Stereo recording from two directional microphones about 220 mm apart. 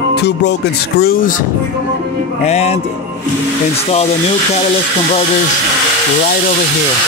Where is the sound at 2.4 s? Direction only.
30° left (ahead or behind).